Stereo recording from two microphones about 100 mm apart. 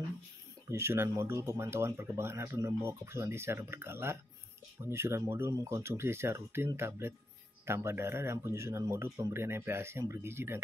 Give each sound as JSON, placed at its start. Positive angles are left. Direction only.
{"t": 0.7, "sound": "speech", "side_deg": -25}